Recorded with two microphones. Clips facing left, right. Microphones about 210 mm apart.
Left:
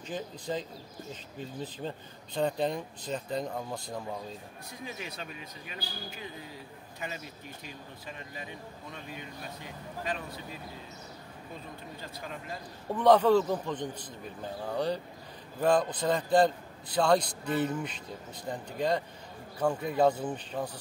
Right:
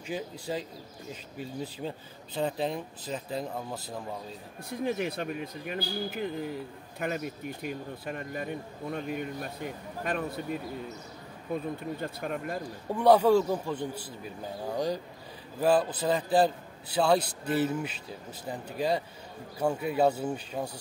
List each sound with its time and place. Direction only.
0.0 s a man's voice: 10° right (ahead or behind)
4.8 s speech: 60° right (ahead or behind)
12.9 s a man's voice: 10° right (ahead or behind)
15.6 s a man's voice: 5° right (ahead or behind)